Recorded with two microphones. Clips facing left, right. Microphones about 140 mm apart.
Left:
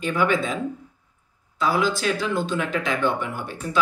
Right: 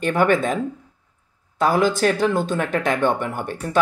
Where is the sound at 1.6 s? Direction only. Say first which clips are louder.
Right 5 dB; 50° right (ahead or behind).